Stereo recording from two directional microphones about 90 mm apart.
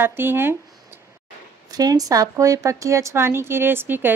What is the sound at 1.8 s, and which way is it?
A woman's voice, 45° right (ahead or behind).